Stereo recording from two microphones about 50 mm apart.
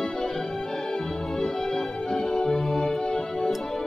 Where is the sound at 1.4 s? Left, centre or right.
Centre.